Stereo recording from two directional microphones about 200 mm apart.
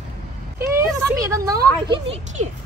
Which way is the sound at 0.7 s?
15° right (ahead or behind).